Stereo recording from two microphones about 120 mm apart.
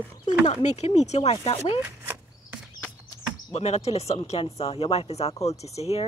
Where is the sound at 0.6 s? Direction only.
65° left (ahead or behind).